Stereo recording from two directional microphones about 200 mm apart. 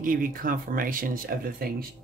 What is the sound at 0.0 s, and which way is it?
Speech, 45° right (ahead or behind).